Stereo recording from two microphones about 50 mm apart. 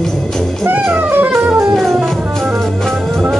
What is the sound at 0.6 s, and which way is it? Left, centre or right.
Music, right.